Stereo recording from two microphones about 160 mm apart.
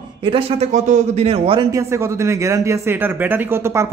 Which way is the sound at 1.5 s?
20° right (ahead or behind).